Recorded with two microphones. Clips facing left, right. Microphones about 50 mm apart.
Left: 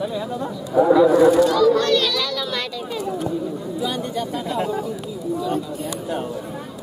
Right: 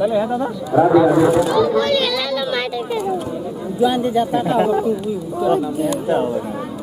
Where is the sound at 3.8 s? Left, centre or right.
Right.